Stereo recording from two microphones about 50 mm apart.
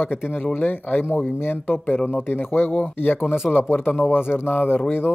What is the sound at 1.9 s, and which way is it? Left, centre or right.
Speech, left.